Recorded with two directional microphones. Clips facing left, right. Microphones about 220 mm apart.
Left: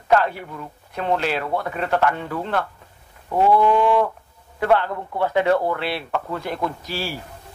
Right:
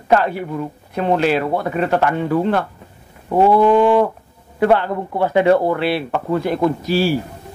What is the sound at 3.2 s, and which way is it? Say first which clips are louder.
Goat: right 4 dB; 35° right (ahead or behind).